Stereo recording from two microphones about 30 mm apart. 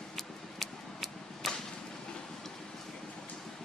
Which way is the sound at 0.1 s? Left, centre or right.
Centre.